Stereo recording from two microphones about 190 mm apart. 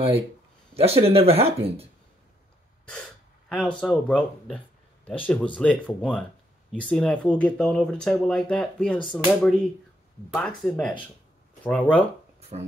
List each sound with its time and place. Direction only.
0.7 s speech: 30° right (ahead or behind)
3.4 s speech: 5° left (ahead or behind)
12.4 s a sound: 35° right (ahead or behind)